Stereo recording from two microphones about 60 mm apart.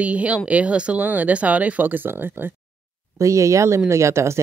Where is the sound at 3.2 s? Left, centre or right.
Right.